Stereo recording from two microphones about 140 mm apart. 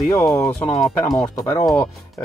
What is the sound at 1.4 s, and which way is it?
Speech, 20° left (ahead or behind).